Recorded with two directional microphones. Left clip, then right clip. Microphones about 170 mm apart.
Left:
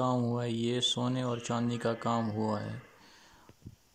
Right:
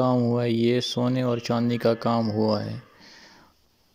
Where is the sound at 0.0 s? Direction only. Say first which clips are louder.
Right 9 dB; 15° right (ahead or behind).